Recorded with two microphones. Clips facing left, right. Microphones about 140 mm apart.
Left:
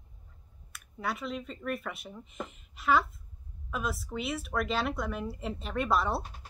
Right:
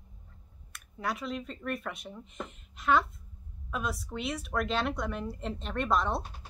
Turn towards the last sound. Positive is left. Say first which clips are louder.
# even
turn(degrees=5)  # may be behind; listen again after turning